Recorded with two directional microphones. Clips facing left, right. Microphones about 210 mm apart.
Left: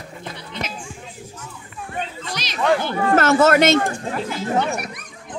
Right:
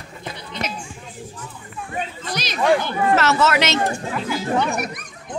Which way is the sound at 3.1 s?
50° left (ahead or behind).